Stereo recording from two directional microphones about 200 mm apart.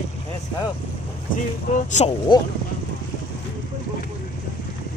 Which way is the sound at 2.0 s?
35° left (ahead or behind).